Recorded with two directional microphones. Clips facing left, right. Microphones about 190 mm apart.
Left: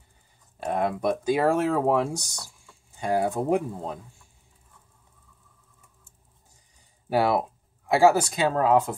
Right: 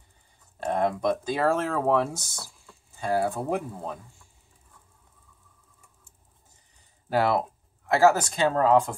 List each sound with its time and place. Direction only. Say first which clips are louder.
0.7 s speech: even; 5° left (ahead or behind)
7.1 s speech: left 1 dB; 10° left (ahead or behind)